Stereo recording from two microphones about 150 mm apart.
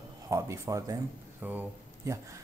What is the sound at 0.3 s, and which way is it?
Speech, 20° right (ahead or behind).